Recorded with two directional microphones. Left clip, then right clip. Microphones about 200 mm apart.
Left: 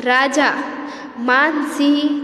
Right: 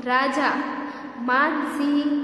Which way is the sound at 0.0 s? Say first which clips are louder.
Left 6 dB; 35° left (ahead or behind).